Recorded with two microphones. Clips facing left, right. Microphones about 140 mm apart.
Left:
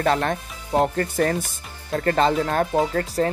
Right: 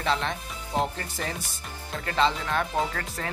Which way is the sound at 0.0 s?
50° left (ahead or behind).